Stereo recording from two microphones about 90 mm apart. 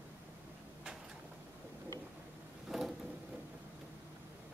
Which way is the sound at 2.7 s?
5° right (ahead or behind).